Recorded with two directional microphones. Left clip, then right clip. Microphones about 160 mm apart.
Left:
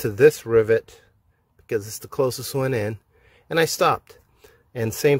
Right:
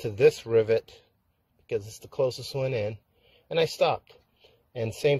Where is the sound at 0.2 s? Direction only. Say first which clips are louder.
Left 5 dB; 40° left (ahead or behind).